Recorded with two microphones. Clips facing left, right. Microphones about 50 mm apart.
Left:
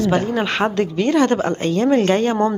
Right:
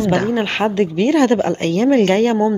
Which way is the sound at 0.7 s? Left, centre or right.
Right.